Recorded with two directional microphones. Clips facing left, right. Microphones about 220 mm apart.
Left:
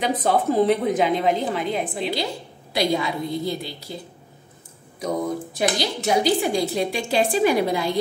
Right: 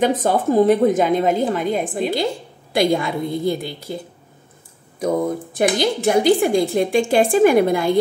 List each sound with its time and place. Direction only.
0.0 s a woman's voice: 45° right (ahead or behind)
5.0 s a woman's voice: 50° right (ahead or behind)